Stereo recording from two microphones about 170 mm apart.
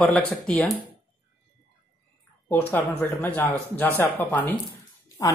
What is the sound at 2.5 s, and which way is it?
Speech, 10° left (ahead or behind).